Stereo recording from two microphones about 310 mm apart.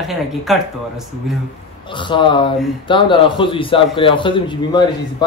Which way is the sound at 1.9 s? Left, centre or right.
Centre.